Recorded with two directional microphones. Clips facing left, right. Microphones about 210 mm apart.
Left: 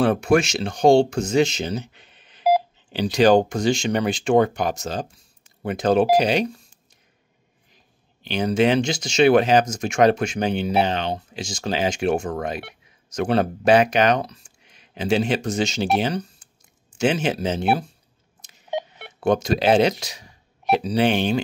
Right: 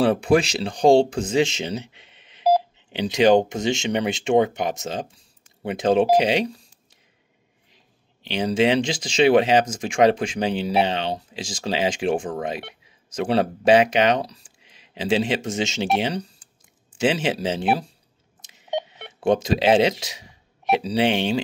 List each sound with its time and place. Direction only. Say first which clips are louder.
0.0 s speech: even; 30° right (ahead or behind)
2.0 s telephone dialing: even; 25° right (ahead or behind)
2.9 s speech: left 1 dB; 20° right (ahead or behind)
7.7 s speech: even; 25° right (ahead or behind)
19.1 s speech: even; 30° right (ahead or behind)